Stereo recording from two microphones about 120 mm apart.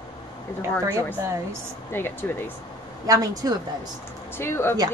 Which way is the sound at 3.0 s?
30° right (ahead or behind).